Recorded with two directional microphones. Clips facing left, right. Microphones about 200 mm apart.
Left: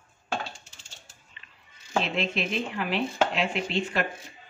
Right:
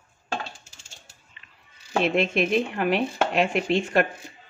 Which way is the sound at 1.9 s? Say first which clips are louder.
Right 6 dB; 50° right (ahead or behind).